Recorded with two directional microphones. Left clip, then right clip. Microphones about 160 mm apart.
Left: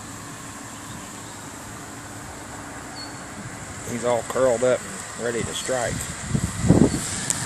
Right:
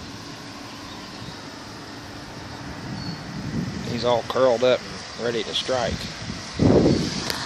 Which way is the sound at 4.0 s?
5° right (ahead or behind).